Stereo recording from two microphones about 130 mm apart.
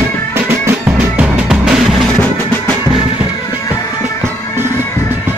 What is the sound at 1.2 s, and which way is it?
Music, 5° right (ahead or behind).